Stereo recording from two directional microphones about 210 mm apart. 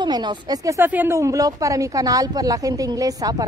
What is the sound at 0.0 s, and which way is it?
Speech, 20° right (ahead or behind).